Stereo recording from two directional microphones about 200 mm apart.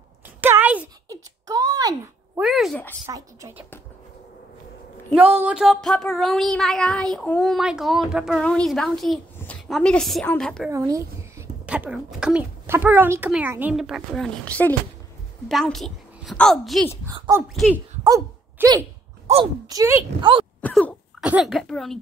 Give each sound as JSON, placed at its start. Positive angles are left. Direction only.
{"t": 0.4, "sound": "a sound", "side_deg": -10}
{"t": 2.4, "sound": "a woman's voice", "side_deg": 0}
{"t": 3.1, "sound": "speech", "side_deg": -15}
{"t": 5.4, "sound": "a woman's voice", "side_deg": -5}
{"t": 10.7, "sound": "a woman's voice", "side_deg": -15}
{"t": 17.1, "sound": "speech", "side_deg": -15}
{"t": 18.0, "sound": "a sound", "side_deg": -20}
{"t": 19.3, "sound": "speech", "side_deg": -35}
{"t": 19.7, "sound": "speech", "side_deg": -15}
{"t": 20.6, "sound": "cough", "side_deg": 5}
{"t": 21.2, "sound": "speech", "side_deg": -5}